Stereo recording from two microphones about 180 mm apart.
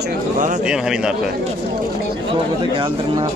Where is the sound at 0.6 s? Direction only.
5° right (ahead or behind).